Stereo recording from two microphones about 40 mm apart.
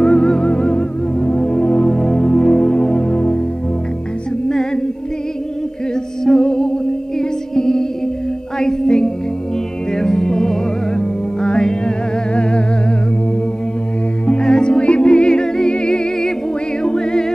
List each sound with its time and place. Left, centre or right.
0.0 s music: left
4.5 s music: centre
6.2 s music: centre
11.4 s music: left
12.4 s humming: left
14.2 s music: left